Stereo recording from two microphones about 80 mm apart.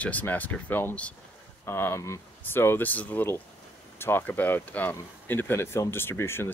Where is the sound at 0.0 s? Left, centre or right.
Centre.